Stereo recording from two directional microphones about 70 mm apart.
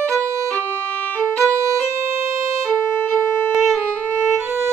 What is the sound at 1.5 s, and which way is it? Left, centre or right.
Music, right.